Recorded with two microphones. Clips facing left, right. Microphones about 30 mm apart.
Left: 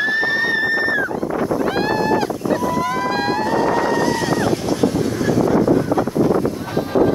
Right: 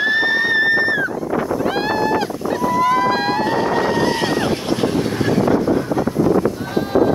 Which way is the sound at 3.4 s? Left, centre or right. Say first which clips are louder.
Even; right.